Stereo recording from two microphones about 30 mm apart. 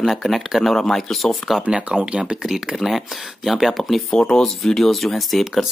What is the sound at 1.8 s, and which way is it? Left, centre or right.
Speech, right.